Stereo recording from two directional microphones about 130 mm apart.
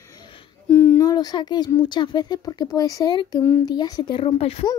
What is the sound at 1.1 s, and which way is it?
Speech, 30° left (ahead or behind).